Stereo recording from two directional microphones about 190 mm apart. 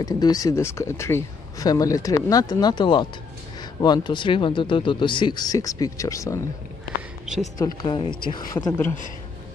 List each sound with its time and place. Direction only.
0.0 s speech: 20° left (ahead or behind)
7.5 s speech: 20° left (ahead or behind)